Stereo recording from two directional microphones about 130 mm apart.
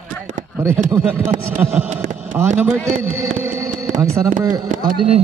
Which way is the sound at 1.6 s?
15° right (ahead or behind).